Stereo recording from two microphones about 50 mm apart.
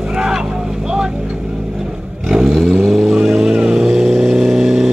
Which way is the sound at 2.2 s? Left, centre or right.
Centre.